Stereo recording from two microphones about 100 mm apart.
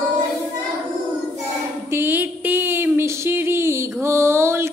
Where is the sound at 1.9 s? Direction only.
20° right (ahead or behind).